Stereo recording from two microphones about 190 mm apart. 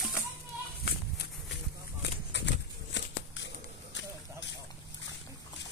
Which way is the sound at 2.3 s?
70° left (ahead or behind).